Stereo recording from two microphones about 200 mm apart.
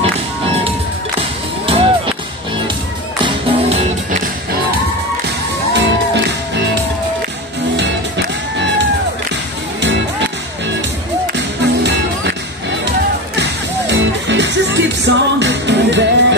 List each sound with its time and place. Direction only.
1.7 s music: 25° right (ahead or behind)
3.4 s music: 30° right (ahead or behind)
5.7 s music: 60° right (ahead or behind)
7.7 s music: 60° right (ahead or behind)
11.3 s music: 60° right (ahead or behind)
13.4 s music: 60° right (ahead or behind)